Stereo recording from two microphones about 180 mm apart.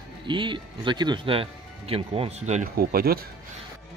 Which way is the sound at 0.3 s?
25° right (ahead or behind).